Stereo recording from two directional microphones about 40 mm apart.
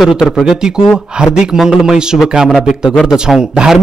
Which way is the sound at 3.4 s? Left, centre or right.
Right.